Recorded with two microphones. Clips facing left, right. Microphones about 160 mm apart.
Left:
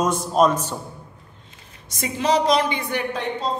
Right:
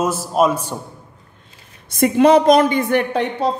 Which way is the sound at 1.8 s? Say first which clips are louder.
Right 10 dB; 55° right (ahead or behind).